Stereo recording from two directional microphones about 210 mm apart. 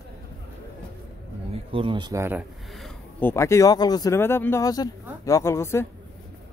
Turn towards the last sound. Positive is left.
turn(degrees=10)  # may be behind; listen again after turning